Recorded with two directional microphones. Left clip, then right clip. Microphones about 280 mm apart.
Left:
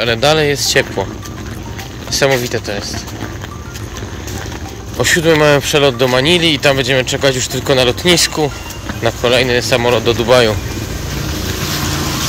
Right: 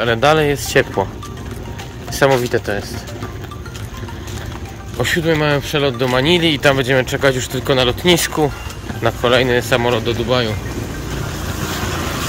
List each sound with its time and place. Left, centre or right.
0.0 s speech: centre
2.0 s speech: centre
4.9 s speech: centre